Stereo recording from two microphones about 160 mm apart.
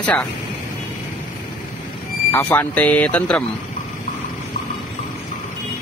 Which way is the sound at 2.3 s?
10° left (ahead or behind).